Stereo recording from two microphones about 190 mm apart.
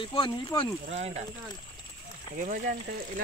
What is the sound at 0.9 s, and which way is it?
Speech, 35° right (ahead or behind).